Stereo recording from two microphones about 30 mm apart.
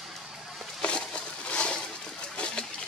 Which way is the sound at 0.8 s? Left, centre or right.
Left.